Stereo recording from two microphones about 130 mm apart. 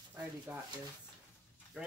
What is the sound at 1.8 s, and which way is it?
Speech, 10° right (ahead or behind).